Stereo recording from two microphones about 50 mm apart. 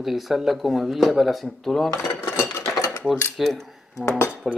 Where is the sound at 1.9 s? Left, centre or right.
Left.